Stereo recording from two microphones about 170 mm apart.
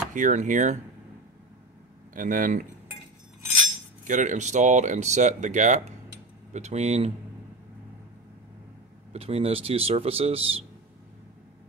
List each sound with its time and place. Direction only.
0.1 s speech: 45° right (ahead or behind)
2.1 s speech: 55° right (ahead or behind)
4.1 s speech: 45° right (ahead or behind)
9.1 s speech: 35° right (ahead or behind)